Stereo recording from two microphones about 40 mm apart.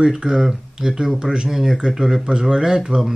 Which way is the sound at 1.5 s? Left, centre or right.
Centre.